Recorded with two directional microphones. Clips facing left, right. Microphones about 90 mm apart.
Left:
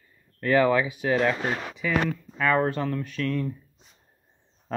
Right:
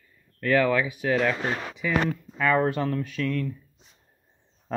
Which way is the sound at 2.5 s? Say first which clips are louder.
Right 1 dB; 30° left (ahead or behind).